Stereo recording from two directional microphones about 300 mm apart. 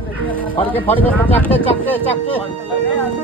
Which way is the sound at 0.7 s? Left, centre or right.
Centre.